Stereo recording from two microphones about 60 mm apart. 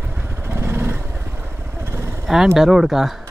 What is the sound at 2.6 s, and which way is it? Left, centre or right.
Speech, centre.